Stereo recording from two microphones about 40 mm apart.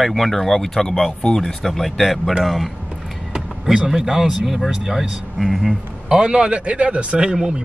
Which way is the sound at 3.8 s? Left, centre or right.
Centre.